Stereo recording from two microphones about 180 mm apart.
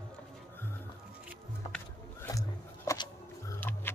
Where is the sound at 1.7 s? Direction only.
15° left (ahead or behind).